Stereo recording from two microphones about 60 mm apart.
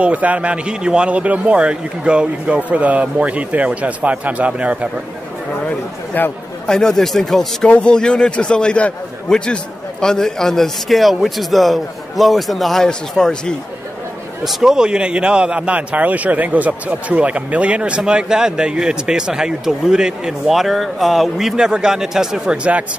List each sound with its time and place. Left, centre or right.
0.0 s a man's voice: right
6.2 s speech: left
6.7 s a man's voice: centre
7.6 s a man's voice: centre
14.4 s a man's voice: centre; by 22.8 s right